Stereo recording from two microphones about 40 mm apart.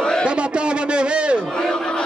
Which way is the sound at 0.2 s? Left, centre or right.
Right.